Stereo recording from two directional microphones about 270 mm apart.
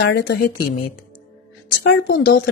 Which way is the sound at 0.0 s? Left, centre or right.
Left.